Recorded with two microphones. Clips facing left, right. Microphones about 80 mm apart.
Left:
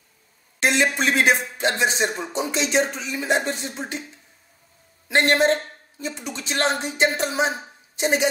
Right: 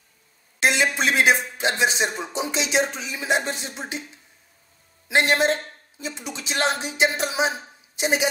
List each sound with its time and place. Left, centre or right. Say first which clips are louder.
0.6 s speech: left 1 dB; centre
5.0 s a woman's voice: left 1 dB; centre